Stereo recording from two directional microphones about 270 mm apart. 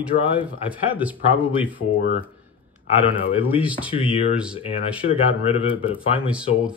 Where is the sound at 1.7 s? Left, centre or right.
Left.